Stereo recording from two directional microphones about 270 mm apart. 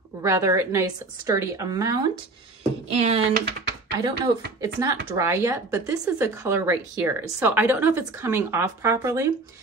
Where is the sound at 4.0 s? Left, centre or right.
Centre.